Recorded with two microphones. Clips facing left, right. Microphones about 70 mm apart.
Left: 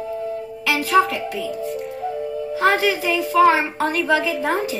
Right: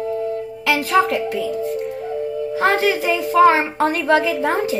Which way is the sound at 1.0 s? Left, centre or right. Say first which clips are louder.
Right 4 dB; right.